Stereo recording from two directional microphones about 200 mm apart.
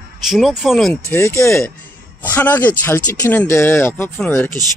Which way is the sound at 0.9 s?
15° left (ahead or behind).